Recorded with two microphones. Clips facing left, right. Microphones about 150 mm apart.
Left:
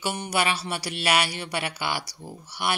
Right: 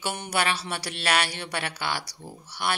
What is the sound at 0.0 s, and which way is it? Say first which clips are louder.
Speech: left 2 dB; 5° left (ahead or behind).